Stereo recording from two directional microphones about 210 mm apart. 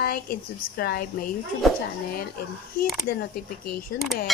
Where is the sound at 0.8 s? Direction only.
45° left (ahead or behind).